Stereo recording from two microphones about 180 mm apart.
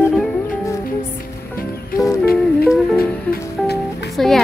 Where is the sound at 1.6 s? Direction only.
55° left (ahead or behind).